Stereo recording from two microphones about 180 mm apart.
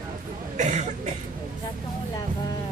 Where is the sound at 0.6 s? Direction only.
40° right (ahead or behind).